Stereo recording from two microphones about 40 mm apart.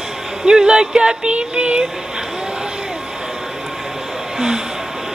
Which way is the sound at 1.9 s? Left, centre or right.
Centre.